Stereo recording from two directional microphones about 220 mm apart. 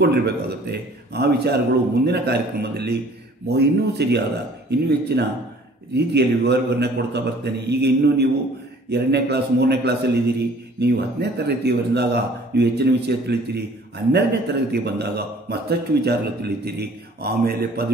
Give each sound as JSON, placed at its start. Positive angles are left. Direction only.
{"t": 0.0, "sound": "speech", "side_deg": -50}